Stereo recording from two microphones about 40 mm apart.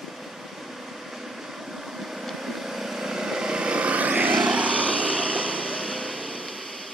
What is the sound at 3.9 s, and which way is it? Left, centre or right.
Vehicle, right.